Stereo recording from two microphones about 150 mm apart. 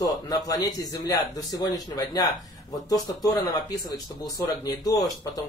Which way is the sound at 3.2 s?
25° left (ahead or behind).